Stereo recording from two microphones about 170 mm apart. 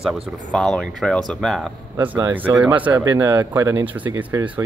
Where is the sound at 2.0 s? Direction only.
15° right (ahead or behind).